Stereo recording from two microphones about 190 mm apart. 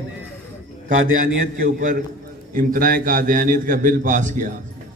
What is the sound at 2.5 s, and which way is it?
A man's voice, 50° right (ahead or behind).